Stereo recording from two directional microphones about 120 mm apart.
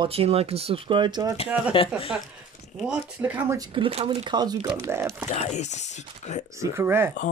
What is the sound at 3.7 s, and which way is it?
Speech, 50° right (ahead or behind).